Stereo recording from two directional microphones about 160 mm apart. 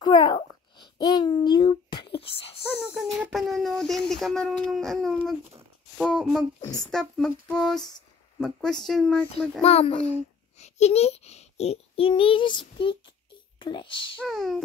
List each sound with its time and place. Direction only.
0.0 s a child's voice: 25° left (ahead or behind)
2.7 s speech: 5° right (ahead or behind)
9.6 s a child's voice: 40° left (ahead or behind)
14.2 s speech: centre (ahead or behind)